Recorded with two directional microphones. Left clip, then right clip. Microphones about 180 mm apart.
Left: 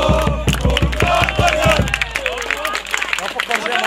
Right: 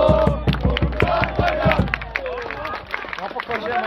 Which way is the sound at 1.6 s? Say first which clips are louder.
Left 4 dB; 40° right (ahead or behind).